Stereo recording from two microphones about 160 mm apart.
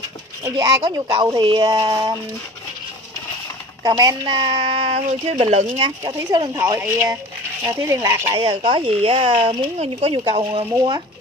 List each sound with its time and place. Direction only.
0.4 s speech: 20° right (ahead or behind)
3.8 s speech: 25° right (ahead or behind); by 5.7 s 50° right (ahead or behind)
5.8 s speech: 30° right (ahead or behind)
8.3 s speech: 35° right (ahead or behind)